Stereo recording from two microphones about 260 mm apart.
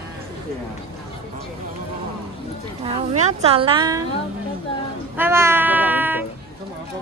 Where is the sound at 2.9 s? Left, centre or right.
Right.